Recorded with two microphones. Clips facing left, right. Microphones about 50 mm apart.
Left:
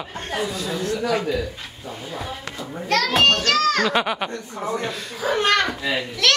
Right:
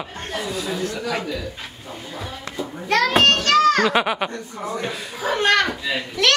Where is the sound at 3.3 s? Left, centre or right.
Centre.